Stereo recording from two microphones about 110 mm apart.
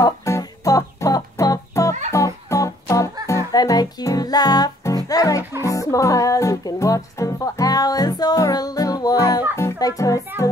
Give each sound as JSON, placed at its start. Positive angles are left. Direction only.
{"t": 0.0, "sound": "music", "side_deg": 30}